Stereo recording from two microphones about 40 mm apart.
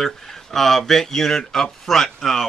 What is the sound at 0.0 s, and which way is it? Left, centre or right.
Speech, centre.